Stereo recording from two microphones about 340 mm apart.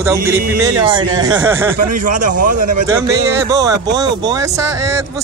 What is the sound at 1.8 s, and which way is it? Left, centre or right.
A man's voice, right.